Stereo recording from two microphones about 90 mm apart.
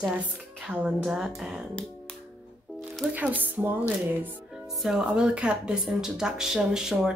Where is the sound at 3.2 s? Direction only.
20° right (ahead or behind).